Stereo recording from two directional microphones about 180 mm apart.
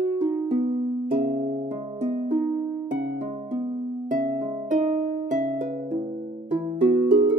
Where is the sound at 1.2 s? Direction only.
40° right (ahead or behind).